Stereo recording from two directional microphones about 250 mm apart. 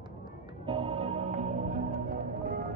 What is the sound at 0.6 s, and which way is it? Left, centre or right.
Music, right.